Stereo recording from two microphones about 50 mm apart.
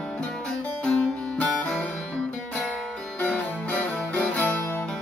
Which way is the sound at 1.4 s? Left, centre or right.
Left.